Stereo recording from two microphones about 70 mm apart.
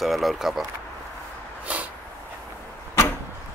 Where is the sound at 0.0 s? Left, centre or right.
Centre.